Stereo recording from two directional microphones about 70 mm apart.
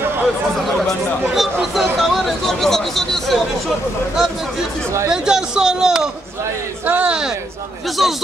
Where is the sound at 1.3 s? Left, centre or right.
Centre.